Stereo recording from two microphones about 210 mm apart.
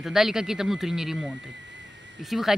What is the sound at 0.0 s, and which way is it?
Speech, centre (ahead or behind).